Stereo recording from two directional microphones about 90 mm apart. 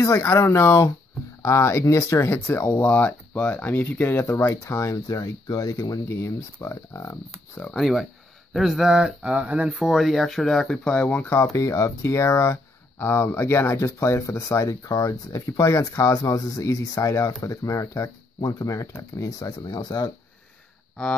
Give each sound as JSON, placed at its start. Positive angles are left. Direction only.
{"t": 0.0, "sound": "speech", "side_deg": 30}
{"t": 2.3, "sound": "speech", "side_deg": 25}
{"t": 7.6, "sound": "speech", "side_deg": 5}
{"t": 9.8, "sound": "speech", "side_deg": 0}
{"t": 11.5, "sound": "speech", "side_deg": 35}